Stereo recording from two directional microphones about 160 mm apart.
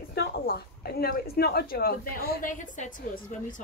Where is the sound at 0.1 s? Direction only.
75° left (ahead or behind); by 2.9 s 55° left (ahead or behind).